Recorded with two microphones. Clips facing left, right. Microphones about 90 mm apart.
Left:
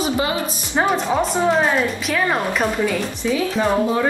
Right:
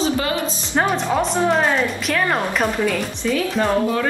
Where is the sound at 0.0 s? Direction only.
15° left (ahead or behind).